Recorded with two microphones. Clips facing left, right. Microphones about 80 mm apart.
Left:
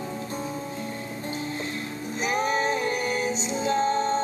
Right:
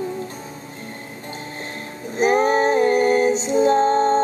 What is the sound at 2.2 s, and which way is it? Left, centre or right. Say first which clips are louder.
Music: right 9 dB; right.